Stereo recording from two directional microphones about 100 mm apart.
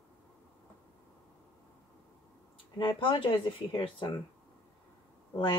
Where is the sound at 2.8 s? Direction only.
60° left (ahead or behind).